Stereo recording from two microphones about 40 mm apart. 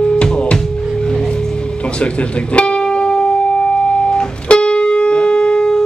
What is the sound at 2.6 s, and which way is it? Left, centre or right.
Music, left.